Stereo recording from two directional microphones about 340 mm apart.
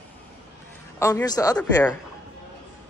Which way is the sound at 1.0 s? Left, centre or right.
Centre.